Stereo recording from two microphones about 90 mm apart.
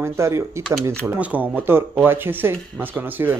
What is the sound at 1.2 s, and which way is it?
A man's voice, 20° right (ahead or behind).